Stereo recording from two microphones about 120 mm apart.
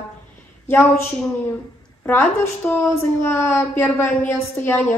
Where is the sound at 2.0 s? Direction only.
20° left (ahead or behind).